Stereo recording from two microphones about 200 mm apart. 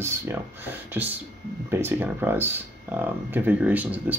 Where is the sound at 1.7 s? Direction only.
10° right (ahead or behind).